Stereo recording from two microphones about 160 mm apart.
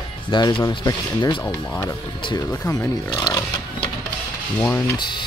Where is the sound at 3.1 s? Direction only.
25° left (ahead or behind).